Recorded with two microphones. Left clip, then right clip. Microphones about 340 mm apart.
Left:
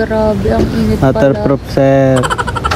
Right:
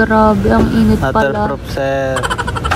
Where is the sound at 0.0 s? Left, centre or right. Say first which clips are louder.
Right 2 dB; right.